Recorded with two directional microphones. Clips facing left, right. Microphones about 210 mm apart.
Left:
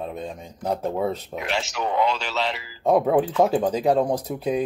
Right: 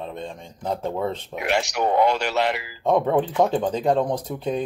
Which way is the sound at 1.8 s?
50° right (ahead or behind).